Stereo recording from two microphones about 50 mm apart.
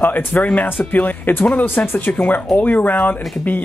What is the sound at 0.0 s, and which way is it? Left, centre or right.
Speech, left.